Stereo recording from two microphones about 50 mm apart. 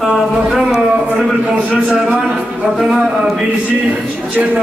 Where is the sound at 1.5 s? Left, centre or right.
Centre.